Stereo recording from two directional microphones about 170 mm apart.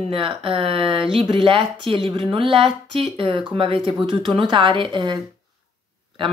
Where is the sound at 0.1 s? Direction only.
35° right (ahead or behind).